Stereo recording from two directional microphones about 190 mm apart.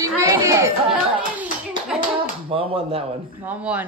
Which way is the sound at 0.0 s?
15° right (ahead or behind).